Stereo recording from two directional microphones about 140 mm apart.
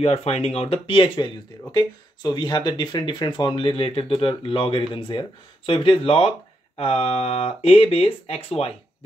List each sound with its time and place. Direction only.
0.0 s speech: 45° left (ahead or behind)